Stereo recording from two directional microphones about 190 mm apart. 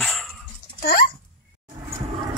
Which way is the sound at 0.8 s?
55° left (ahead or behind).